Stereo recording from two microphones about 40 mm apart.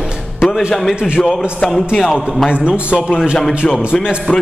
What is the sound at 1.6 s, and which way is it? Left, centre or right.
Speech, centre.